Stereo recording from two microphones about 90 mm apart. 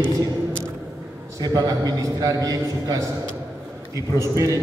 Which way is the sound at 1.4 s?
40° right (ahead or behind).